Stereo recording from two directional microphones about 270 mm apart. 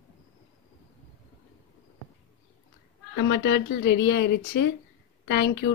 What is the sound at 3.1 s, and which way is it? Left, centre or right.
Speech, left.